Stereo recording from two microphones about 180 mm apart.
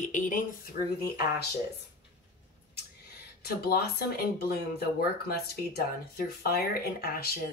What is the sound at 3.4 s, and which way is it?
A woman's voice, 60° left (ahead or behind).